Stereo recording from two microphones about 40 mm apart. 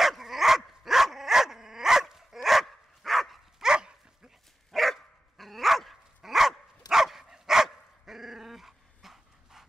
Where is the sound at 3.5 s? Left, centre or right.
Centre.